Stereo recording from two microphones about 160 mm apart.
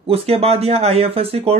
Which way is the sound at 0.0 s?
35° right (ahead or behind).